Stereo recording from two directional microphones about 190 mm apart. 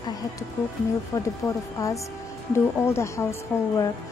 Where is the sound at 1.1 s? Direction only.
15° left (ahead or behind).